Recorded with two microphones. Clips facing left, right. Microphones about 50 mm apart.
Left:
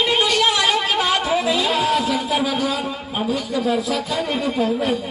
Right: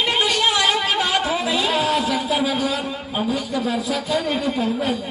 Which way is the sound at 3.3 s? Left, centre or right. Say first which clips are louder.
Left 2 dB; centre.